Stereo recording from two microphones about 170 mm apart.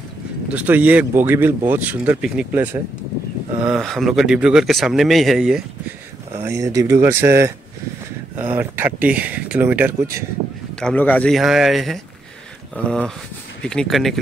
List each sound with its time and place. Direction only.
0.5 s speech: 10° right (ahead or behind)
3.6 s speech: centre (ahead or behind)
6.4 s speech: 15° right (ahead or behind)
10.8 s speech: 5° left (ahead or behind)